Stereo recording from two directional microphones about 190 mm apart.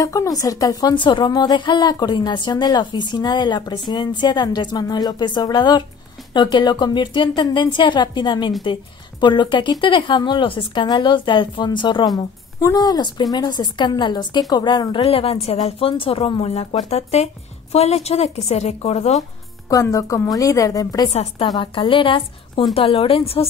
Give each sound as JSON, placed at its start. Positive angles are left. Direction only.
{"t": 0.0, "sound": "a woman's voice", "side_deg": 15}
{"t": 19.7, "sound": "a woman's voice", "side_deg": 20}
{"t": 21.1, "sound": "a woman's voice", "side_deg": 35}